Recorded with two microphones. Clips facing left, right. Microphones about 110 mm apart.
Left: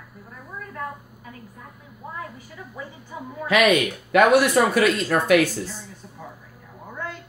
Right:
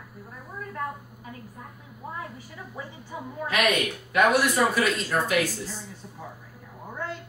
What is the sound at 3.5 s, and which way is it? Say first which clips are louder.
A woman's voice: left 7 dB; 90° left.